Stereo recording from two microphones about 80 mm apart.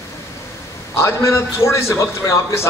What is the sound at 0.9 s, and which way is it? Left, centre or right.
A man's voice, left.